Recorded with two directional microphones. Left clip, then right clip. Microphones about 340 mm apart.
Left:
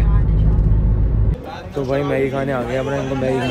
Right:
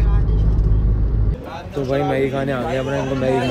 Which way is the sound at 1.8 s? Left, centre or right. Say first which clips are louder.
Even; centre.